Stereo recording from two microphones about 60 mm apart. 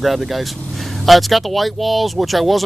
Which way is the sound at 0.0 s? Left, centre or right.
Centre.